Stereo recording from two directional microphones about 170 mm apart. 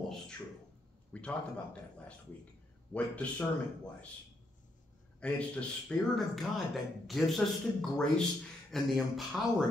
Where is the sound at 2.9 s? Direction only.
10° left (ahead or behind).